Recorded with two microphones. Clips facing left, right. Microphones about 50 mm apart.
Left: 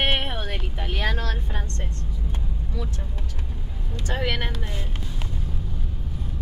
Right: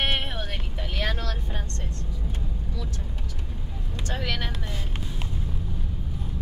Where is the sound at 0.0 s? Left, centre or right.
Left.